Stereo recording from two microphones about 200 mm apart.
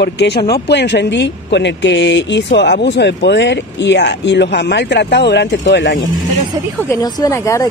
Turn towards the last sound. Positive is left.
turn(degrees=15)  # may be behind; listen again after turning